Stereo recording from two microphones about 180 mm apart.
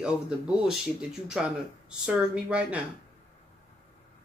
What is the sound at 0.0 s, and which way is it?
Speech, 5° right (ahead or behind).